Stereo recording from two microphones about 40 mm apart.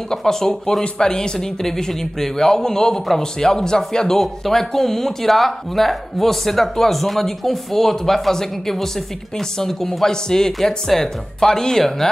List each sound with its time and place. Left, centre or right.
0.1 s speech: centre